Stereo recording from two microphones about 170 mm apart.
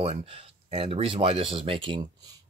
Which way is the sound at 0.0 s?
35° right (ahead or behind).